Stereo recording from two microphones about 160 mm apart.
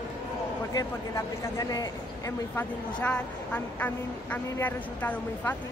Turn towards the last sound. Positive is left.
turn(degrees=10)  # may be behind; listen again after turning